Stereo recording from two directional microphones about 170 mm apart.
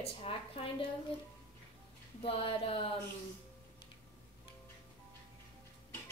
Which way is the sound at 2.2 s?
35° left (ahead or behind).